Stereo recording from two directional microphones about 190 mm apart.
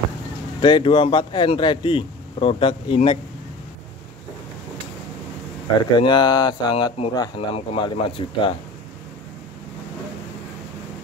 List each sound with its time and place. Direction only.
0.6 s speech: 25° left (ahead or behind)
5.8 s speech: 25° left (ahead or behind)